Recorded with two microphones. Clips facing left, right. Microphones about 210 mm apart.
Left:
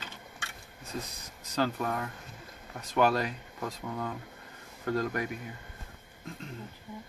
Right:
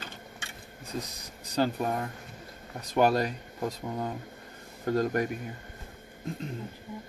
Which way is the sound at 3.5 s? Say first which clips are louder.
Right 5 dB; 25° right (ahead or behind).